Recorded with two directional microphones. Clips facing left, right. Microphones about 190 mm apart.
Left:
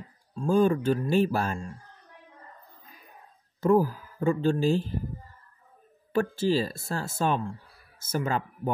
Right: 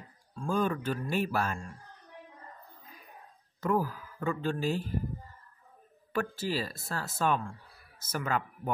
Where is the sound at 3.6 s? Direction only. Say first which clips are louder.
Left 7 dB; 30° left (ahead or behind).